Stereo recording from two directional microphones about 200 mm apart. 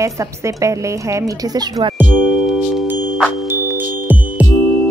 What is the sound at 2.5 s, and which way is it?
Music, 5° right (ahead or behind).